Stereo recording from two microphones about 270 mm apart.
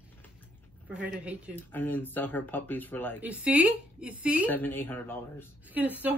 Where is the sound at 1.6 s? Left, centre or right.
Centre.